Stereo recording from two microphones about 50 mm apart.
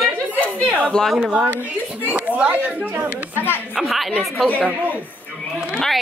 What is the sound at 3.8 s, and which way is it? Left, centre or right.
Speech, centre.